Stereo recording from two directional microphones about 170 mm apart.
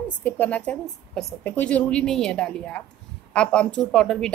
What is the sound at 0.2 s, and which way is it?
A woman's voice, 10° left (ahead or behind).